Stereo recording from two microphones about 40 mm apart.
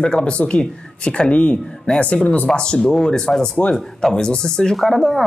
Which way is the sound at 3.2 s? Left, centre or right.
Centre.